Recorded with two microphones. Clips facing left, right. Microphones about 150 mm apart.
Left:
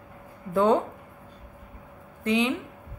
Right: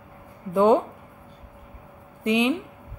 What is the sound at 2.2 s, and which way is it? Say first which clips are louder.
Speech: right 3 dB; 20° right (ahead or behind).